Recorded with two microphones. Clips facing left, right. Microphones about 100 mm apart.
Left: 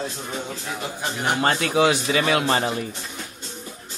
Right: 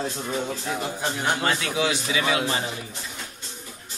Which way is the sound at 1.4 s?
40° left (ahead or behind).